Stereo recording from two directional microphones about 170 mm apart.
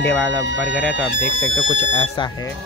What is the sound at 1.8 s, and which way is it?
Speech, 30° left (ahead or behind).